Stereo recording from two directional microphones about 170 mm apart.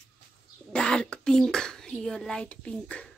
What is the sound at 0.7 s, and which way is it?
Speech, 5° left (ahead or behind).